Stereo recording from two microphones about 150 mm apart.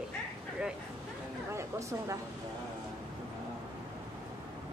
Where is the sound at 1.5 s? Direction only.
20° right (ahead or behind).